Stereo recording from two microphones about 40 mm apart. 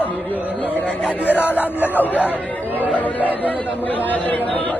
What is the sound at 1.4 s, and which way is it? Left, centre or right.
Speech, right.